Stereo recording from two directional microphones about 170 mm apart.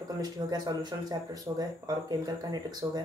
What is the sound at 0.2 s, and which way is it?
Speech, 25° right (ahead or behind).